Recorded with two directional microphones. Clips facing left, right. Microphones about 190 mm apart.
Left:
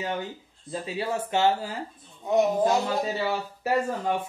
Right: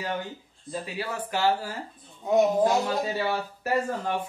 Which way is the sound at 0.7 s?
25° left (ahead or behind).